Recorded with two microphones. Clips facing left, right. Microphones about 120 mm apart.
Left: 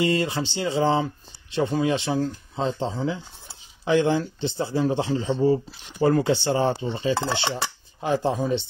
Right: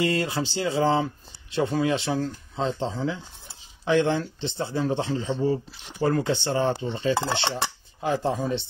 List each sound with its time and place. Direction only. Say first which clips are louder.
0.0 s speech: left 2 dB; centre (ahead or behind)